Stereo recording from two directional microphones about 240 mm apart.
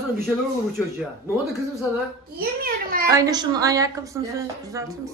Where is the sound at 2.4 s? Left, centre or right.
Right.